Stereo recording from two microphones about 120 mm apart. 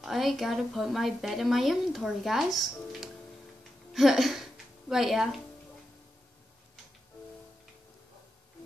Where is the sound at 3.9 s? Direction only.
Centre (ahead or behind).